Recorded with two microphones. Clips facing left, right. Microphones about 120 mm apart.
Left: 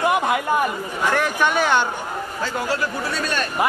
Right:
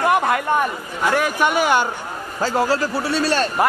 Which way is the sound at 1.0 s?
10° right (ahead or behind).